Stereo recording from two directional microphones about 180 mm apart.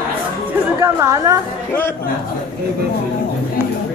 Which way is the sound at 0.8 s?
20° right (ahead or behind).